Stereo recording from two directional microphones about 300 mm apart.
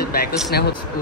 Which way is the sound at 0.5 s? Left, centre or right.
Left.